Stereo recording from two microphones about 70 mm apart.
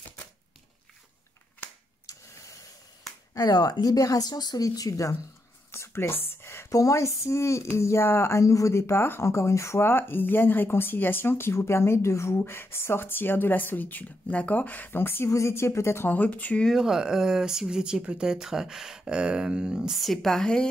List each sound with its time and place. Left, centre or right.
2.1 s a sound: left
3.3 s speech: left
5.7 s a sound: left
6.7 s speech: left
16.1 s speech: left
16.7 s speech: centre